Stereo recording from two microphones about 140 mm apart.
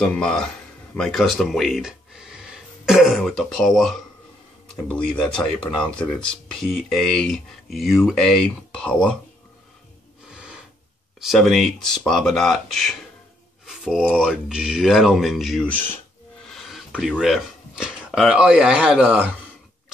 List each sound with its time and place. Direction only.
0.0 s speech: 5° left (ahead or behind)
10.3 s breathing: 5° right (ahead or behind)
11.1 s speech: centre (ahead or behind)
16.7 s a sound: centre (ahead or behind)
17.2 s speech: 5° right (ahead or behind)